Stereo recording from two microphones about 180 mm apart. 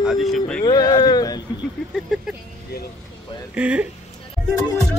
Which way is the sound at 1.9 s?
Centre (ahead or behind).